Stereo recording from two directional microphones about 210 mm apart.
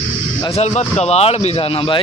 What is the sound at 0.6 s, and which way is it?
Speech, 30° left (ahead or behind).